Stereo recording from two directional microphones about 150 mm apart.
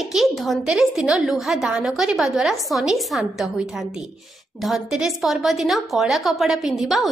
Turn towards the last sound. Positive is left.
turn(degrees=0)  # may be behind; listen again after turning